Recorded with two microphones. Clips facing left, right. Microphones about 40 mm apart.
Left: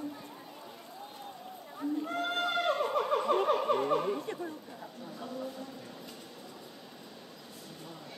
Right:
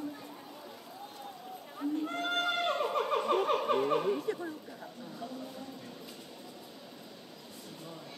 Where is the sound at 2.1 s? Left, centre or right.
Centre.